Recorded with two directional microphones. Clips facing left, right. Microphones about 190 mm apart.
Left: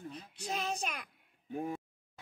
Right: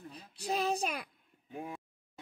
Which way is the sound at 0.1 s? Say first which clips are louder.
Right 7 dB; 35° right (ahead or behind).